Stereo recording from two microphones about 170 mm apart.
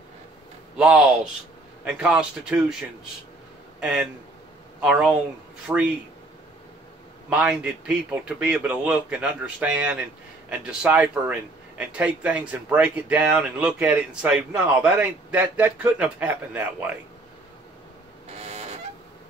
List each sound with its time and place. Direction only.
0.7 s a man's voice: 5° right (ahead or behind)
7.2 s speech: 5° right (ahead or behind)
18.4 s a sound: 40° right (ahead or behind)